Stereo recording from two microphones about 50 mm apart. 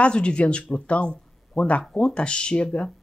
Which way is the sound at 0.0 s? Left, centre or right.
Centre.